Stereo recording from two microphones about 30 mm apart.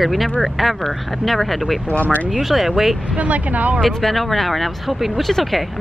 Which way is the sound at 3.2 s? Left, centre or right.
Right.